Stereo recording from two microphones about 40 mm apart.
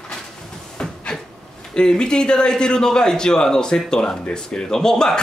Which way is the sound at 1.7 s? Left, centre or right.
Left.